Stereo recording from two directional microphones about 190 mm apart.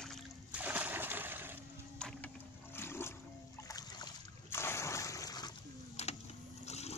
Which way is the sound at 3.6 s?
20° left (ahead or behind).